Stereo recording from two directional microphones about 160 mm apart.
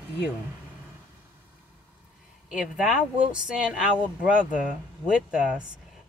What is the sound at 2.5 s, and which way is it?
Speech, 5° right (ahead or behind).